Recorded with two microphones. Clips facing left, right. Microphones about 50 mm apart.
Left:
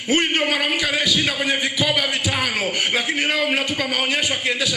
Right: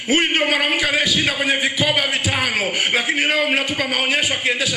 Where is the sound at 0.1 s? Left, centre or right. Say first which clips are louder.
Right 2 dB; centre.